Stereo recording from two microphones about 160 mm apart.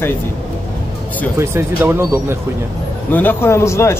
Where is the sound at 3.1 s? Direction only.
15° left (ahead or behind).